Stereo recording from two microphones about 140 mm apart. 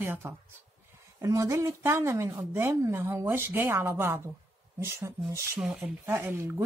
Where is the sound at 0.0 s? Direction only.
15° right (ahead or behind).